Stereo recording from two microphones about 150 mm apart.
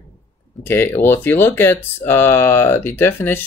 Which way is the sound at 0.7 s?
15° left (ahead or behind).